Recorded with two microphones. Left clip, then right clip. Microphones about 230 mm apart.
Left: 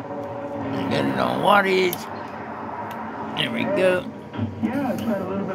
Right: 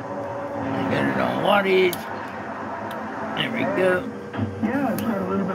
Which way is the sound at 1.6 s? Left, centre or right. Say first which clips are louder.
Right 1 dB; left.